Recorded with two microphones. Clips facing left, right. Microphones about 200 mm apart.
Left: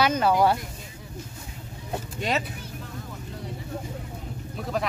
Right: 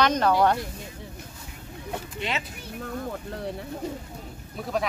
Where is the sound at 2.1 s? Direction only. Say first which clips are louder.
Left 5 dB; 40° left (ahead or behind).